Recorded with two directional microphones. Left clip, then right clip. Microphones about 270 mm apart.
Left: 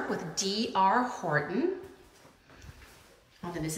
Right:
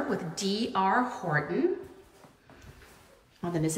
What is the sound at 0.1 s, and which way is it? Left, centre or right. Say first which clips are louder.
A woman's voice: right 1 dB; centre.